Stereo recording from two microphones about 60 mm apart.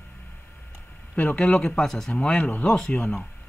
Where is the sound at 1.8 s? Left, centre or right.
Centre.